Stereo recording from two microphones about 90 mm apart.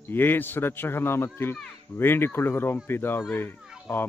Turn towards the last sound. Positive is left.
turn(degrees=25)  # may be behind; listen again after turning